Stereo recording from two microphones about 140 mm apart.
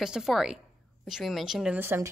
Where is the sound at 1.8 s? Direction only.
15° right (ahead or behind).